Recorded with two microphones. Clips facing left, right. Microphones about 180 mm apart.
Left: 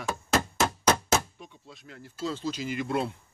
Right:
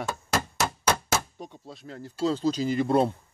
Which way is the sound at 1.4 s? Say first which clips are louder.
Right 6 dB; 40° right (ahead or behind).